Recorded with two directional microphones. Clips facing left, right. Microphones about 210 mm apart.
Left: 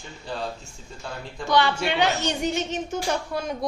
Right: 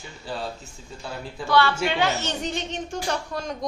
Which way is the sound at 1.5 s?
15° left (ahead or behind).